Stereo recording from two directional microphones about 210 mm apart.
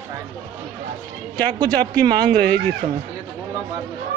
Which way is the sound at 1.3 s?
45° right (ahead or behind).